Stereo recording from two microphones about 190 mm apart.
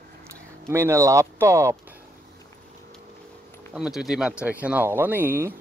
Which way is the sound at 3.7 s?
5° right (ahead or behind).